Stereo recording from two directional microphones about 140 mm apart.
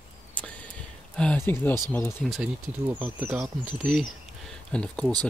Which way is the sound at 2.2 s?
Centre (ahead or behind).